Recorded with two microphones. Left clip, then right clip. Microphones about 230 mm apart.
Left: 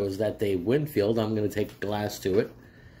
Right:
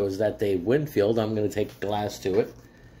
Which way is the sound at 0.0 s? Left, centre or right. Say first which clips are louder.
Right 3 dB; centre.